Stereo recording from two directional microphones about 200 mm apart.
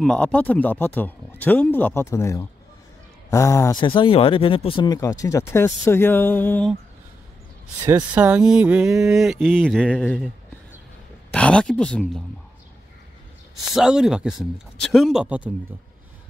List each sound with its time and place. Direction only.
0.0 s speech: 5° left (ahead or behind)
7.8 s a sound: 15° right (ahead or behind)
8.2 s a sound: 5° right (ahead or behind)
9.1 s speech: centre (ahead or behind)
11.3 s speech: 5° left (ahead or behind)
13.7 s speech: 5° right (ahead or behind)